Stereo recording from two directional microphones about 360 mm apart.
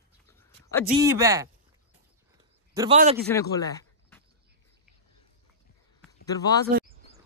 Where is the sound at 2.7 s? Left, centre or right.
Centre.